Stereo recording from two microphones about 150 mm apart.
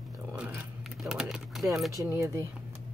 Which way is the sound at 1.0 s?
5° right (ahead or behind).